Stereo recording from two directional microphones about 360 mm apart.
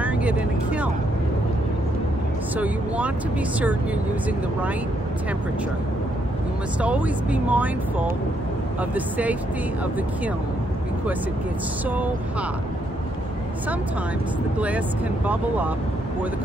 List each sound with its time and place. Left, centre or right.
0.0 s speech: centre
2.5 s speech: centre
6.8 s speech: centre
11.9 s speech: centre
15.2 s speech: centre